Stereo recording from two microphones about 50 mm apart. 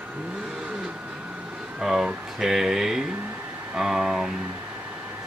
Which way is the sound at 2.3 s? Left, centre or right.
Centre.